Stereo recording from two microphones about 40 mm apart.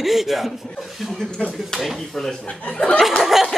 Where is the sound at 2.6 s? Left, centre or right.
Left.